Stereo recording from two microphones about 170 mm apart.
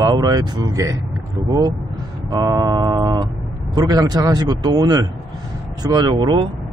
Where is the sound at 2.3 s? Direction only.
20° right (ahead or behind).